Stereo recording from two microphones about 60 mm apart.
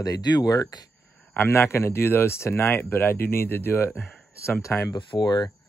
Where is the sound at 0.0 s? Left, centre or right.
Left.